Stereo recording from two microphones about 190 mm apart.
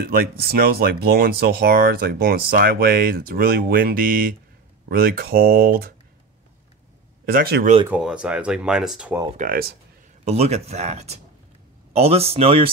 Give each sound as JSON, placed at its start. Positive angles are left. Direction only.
{"t": 0.0, "sound": "speech", "side_deg": -50}
{"t": 7.2, "sound": "speech", "side_deg": -55}
{"t": 7.9, "sound": "speech", "side_deg": -5}
{"t": 9.4, "sound": "speech", "side_deg": -50}
{"t": 10.2, "sound": "speech", "side_deg": -35}